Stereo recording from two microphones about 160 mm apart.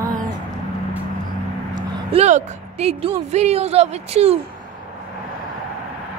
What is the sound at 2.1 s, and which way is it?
Speech, 45° right (ahead or behind).